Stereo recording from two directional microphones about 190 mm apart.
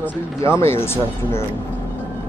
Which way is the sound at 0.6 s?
15° left (ahead or behind).